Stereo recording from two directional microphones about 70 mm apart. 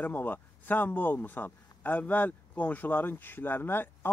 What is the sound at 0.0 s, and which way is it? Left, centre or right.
Speech, left.